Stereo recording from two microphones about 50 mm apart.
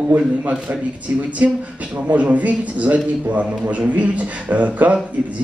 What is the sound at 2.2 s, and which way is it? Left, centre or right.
A man's voice, right.